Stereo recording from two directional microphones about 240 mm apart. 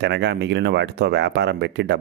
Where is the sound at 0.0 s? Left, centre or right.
Right.